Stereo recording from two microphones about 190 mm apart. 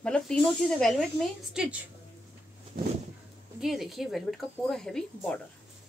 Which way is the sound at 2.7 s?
50° right (ahead or behind).